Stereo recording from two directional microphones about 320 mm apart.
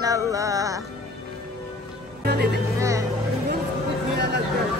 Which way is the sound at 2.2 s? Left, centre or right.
Right.